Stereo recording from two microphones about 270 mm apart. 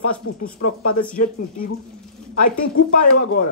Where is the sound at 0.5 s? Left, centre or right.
Left.